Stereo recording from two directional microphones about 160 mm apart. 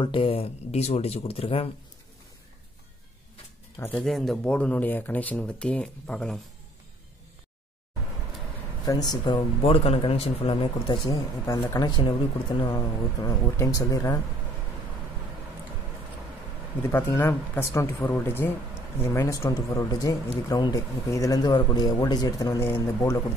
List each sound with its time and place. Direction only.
0.0 s speech: 35° left (ahead or behind)
4.0 s speech: centre (ahead or behind)
8.8 s a man's voice: 25° left (ahead or behind)
9.6 s speech: 35° left (ahead or behind)
11.1 s a man's voice: 20° left (ahead or behind)
12.0 s a man's voice: 30° left (ahead or behind)
16.9 s a man's voice: 15° left (ahead or behind)